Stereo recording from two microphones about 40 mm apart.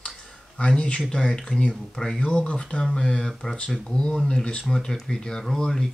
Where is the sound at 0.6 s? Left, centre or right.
Left.